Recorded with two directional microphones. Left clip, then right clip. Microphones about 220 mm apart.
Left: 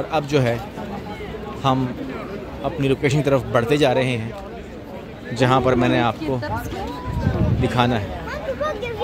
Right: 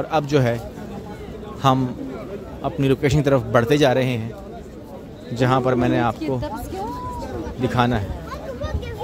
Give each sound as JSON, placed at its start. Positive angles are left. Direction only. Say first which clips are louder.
{"t": 0.1, "sound": "a man's voice", "louder": "right 1 dB", "side_deg": -10}
{"t": 1.6, "sound": "a man's voice", "louder": "right 2 dB", "side_deg": -20}
{"t": 5.3, "sound": "a man's voice", "louder": "left 2 dB", "side_deg": -5}
{"t": 7.6, "sound": "a man's voice", "louder": "even", "side_deg": -5}